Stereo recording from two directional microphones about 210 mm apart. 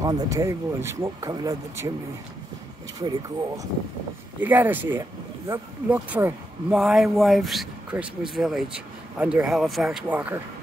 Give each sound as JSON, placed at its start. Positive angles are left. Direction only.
{"t": 0.0, "sound": "speech", "side_deg": -15}
{"t": 3.0, "sound": "speech", "side_deg": -20}